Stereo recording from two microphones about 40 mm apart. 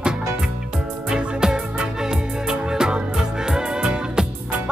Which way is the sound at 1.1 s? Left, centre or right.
Centre.